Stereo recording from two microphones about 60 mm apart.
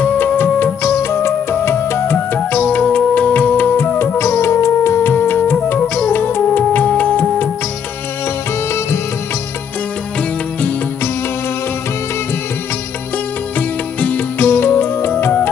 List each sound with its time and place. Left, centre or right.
0.0 s music of bollywood: left
0.8 s music: left
2.1 s music: left
2.7 s music: centre
13.6 s music: left